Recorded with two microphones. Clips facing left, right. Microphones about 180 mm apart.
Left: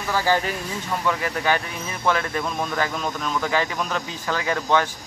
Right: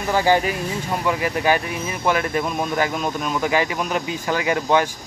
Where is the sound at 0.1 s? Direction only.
15° right (ahead or behind).